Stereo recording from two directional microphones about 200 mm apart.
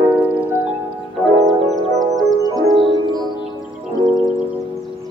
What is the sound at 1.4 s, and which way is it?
Music, centre (ahead or behind).